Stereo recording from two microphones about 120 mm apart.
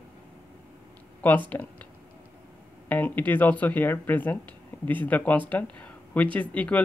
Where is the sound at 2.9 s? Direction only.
15° left (ahead or behind).